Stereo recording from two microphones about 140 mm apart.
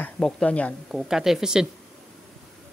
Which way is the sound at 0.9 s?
5° right (ahead or behind).